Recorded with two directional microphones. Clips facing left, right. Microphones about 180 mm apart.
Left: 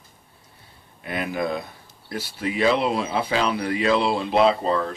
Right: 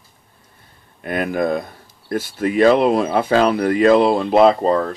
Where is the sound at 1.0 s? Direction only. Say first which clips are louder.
Right 6 dB; 50° right (ahead or behind).